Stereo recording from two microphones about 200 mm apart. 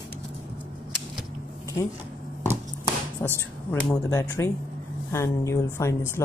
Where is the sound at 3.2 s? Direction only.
15° left (ahead or behind).